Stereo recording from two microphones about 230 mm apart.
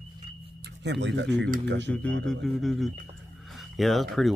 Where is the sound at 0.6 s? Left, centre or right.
Right.